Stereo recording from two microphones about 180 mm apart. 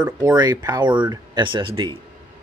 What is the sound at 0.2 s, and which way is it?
Speech, 20° right (ahead or behind).